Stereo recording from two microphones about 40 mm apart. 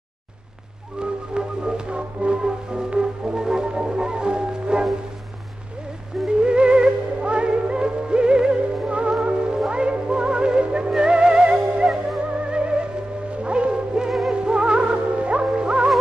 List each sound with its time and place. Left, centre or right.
0.9 s music: right
6.2 s music: right